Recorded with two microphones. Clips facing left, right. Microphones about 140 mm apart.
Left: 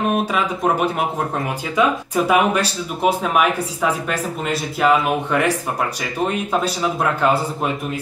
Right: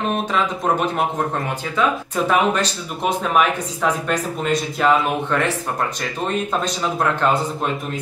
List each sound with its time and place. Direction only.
0.1 s speech: 10° left (ahead or behind)